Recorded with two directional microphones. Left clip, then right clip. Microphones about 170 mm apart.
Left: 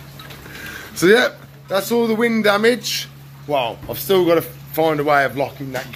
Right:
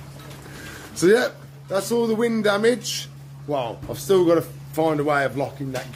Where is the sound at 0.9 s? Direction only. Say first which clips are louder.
Left 4 dB; 10° right (ahead or behind).